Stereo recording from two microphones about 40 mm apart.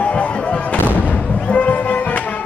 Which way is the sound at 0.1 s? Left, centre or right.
Left.